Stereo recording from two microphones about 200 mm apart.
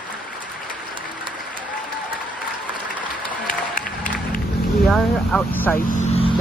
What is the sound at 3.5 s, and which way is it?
Applause, 45° left (ahead or behind).